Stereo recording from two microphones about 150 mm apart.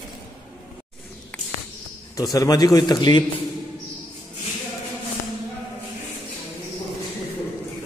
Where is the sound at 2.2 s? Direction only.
25° left (ahead or behind).